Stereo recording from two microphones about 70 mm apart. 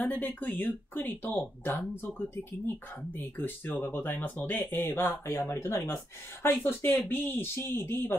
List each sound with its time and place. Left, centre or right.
0.0 s speech: left
3.2 s speech: left
5.4 s speech: left
6.4 s speech: left